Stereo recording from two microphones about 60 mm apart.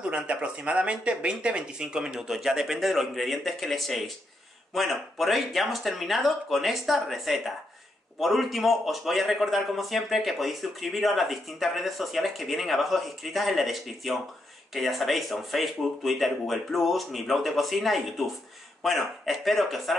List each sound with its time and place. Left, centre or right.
0.0 s a man's voice: centre